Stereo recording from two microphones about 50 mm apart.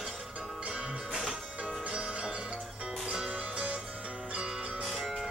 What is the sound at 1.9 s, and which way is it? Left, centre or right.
Music, centre.